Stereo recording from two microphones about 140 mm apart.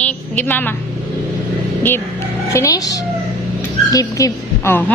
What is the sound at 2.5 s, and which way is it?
Speech, 25° left (ahead or behind).